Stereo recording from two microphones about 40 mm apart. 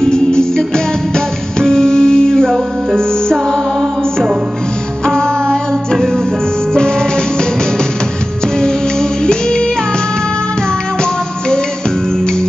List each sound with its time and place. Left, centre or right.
0.0 s music: centre
5.0 s music: centre
9.2 s music: left